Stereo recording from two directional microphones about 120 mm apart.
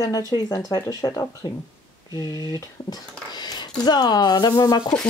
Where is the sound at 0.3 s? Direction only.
30° left (ahead or behind).